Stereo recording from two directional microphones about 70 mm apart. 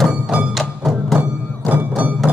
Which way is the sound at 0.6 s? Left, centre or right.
Centre.